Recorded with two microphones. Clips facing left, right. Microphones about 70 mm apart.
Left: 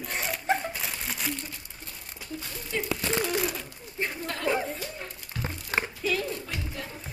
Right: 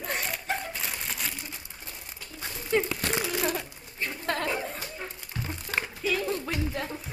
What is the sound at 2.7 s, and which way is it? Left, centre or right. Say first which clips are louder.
Speech: right 7 dB; right.